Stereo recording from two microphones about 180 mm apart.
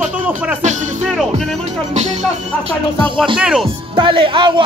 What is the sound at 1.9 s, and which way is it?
Music, 40° right (ahead or behind).